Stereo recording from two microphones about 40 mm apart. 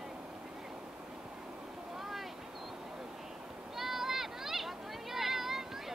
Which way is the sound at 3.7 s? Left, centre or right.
Centre.